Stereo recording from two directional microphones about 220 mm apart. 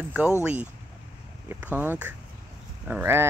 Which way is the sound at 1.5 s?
5° right (ahead or behind).